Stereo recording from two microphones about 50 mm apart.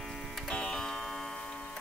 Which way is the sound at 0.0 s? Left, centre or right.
Centre.